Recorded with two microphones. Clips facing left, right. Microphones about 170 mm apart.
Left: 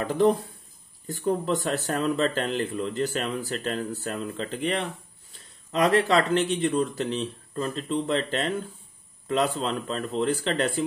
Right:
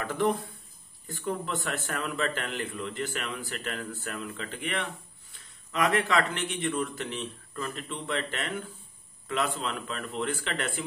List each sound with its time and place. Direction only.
0.0 s speech: 35° left (ahead or behind)